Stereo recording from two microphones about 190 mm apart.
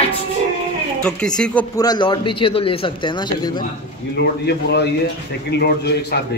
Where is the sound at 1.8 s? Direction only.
25° left (ahead or behind).